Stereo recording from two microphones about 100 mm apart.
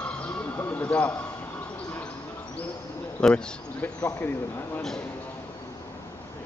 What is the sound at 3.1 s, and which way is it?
Speech, 10° left (ahead or behind).